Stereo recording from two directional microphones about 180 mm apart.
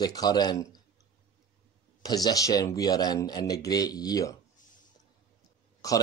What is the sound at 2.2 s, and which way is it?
Speech, 20° left (ahead or behind).